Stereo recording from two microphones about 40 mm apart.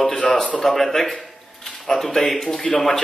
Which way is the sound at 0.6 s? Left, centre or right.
Centre.